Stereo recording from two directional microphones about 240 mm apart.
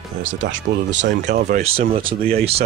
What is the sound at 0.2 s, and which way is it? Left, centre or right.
Speech, right.